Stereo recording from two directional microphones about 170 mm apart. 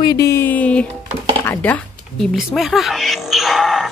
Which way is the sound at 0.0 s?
20° left (ahead or behind).